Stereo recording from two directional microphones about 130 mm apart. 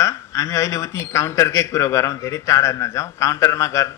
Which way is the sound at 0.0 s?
25° left (ahead or behind).